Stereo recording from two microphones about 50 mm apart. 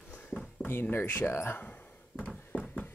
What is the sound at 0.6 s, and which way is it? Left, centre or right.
Speech, left.